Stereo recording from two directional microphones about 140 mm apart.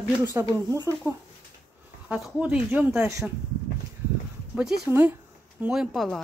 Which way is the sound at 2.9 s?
20° right (ahead or behind).